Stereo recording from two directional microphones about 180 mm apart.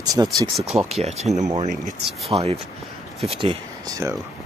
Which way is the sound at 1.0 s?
35° right (ahead or behind).